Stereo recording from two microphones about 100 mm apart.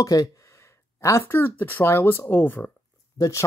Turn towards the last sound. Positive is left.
turn(degrees=30)  # may be behind; listen again after turning